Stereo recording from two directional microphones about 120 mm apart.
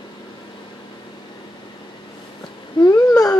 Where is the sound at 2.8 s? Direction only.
40° left (ahead or behind).